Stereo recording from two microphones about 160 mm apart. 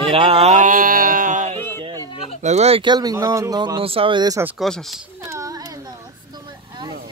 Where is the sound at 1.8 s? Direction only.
25° right (ahead or behind).